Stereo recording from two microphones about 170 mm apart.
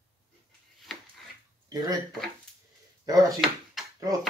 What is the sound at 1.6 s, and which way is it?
Speech, 20° right (ahead or behind).